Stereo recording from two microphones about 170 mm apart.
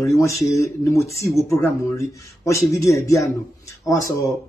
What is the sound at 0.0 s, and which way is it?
Speech, 20° left (ahead or behind).